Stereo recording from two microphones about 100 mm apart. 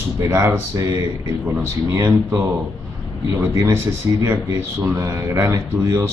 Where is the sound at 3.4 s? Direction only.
25° right (ahead or behind).